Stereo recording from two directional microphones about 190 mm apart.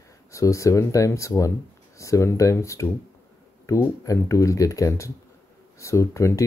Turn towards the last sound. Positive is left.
turn(degrees=15)  # may be behind; listen again after turning